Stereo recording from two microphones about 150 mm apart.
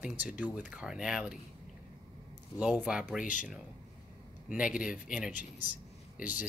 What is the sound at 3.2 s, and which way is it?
Speech, 60° left (ahead or behind).